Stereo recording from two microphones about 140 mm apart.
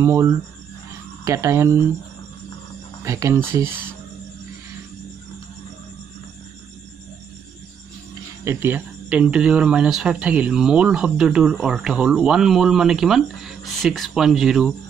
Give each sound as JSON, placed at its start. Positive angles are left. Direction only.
{"t": 0.0, "sound": "speech", "side_deg": -20}
{"t": 3.0, "sound": "speech", "side_deg": -20}
{"t": 8.5, "sound": "speech", "side_deg": -15}